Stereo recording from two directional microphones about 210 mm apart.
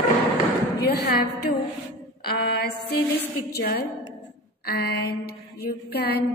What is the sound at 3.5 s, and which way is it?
A woman's voice, 50° left (ahead or behind).